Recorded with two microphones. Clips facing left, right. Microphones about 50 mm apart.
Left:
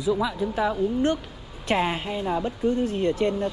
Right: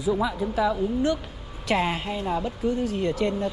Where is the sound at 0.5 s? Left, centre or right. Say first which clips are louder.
Even; left.